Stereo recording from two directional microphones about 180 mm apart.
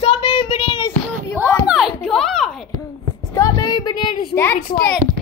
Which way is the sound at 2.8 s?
20° left (ahead or behind).